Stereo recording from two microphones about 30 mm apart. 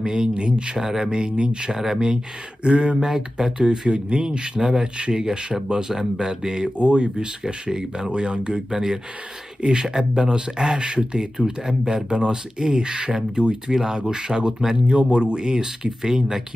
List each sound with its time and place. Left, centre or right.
0.0 s speech: right
1.0 s speech: right
1.7 s speech: centre
2.6 s speech: right
3.1 s speech: centre
6.8 s speech: right; by 8.1 s centre
8.1 s speech: right
11.1 s speech: centre
14.9 s speech: right
15.3 s speech: right